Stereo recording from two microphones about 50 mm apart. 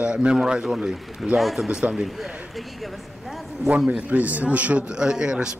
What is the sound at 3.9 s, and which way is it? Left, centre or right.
Speech, right.